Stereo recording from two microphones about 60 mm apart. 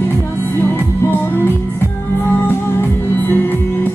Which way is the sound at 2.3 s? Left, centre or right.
Left.